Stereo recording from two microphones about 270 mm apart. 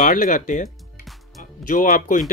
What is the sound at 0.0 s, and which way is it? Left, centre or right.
Speech, left.